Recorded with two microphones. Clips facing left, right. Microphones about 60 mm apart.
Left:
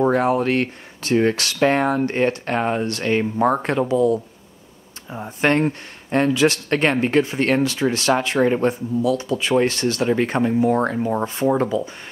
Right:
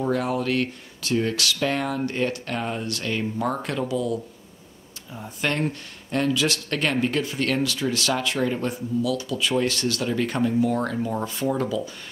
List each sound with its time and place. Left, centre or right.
0.0 s speech: left